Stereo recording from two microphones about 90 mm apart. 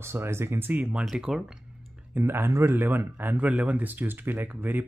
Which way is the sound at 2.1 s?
25° right (ahead or behind).